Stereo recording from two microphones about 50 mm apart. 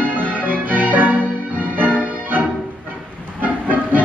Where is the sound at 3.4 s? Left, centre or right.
Right.